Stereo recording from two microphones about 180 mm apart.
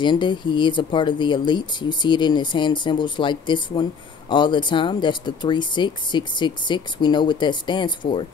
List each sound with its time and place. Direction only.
0.0 s speech: 25° left (ahead or behind)